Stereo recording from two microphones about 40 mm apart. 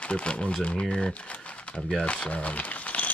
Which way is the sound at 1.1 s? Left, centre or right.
Left.